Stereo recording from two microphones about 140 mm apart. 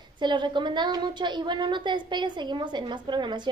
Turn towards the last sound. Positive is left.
turn(degrees=-35)  # may be behind; listen again after turning